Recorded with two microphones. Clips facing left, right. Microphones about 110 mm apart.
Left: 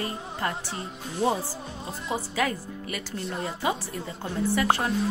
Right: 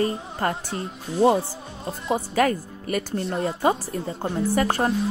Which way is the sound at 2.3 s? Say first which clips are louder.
Right 8 dB; 45° right (ahead or behind).